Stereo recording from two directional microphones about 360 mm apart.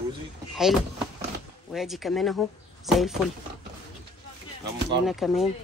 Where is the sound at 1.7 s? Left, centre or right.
Centre.